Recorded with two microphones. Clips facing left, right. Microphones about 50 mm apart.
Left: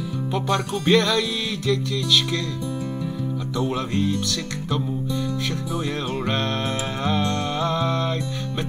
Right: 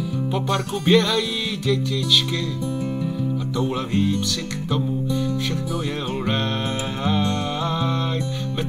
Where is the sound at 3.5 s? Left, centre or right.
Centre.